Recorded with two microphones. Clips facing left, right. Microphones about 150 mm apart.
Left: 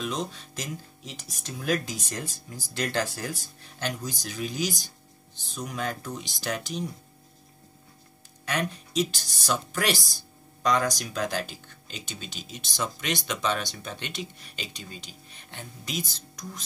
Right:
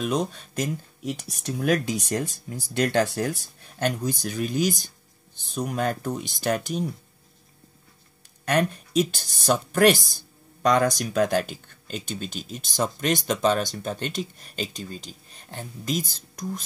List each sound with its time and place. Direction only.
0.0 s speech: 55° right (ahead or behind)
8.5 s speech: 50° right (ahead or behind)